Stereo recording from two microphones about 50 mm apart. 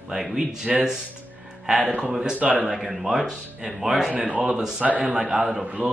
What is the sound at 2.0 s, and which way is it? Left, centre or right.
Speech, centre.